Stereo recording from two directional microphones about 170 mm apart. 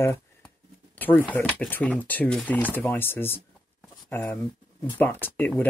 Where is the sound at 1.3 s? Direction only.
10° left (ahead or behind).